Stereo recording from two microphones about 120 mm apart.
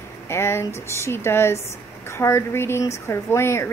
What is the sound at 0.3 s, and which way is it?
Speech, 20° left (ahead or behind).